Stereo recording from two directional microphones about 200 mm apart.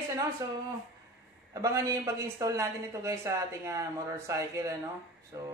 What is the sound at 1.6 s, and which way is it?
Speech, 15° right (ahead or behind).